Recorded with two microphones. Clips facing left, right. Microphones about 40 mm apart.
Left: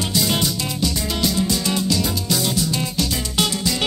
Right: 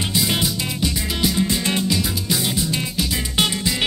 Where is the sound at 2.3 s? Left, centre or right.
Centre.